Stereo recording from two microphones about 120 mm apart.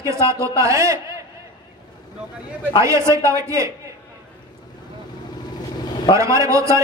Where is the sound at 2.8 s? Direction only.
25° right (ahead or behind).